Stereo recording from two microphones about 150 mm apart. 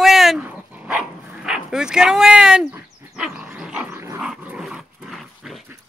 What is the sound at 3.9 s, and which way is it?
Dog, 20° right (ahead or behind).